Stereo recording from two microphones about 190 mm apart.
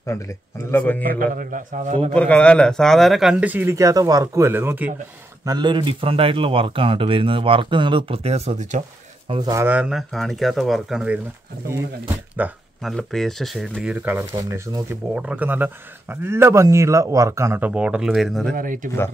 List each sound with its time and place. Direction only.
0.0 s speech: 15° left (ahead or behind)
1.0 s a man's voice: 45° right (ahead or behind)
2.1 s a man's voice: 5° left (ahead or behind); by 4.9 s 10° right (ahead or behind)
5.4 s speech: 20° right (ahead or behind)
9.3 s speech: 20° right (ahead or behind); by 11.1 s 5° right (ahead or behind)
12.4 s a man's voice: 10° right (ahead or behind)
18.5 s a man's voice: 45° right (ahead or behind)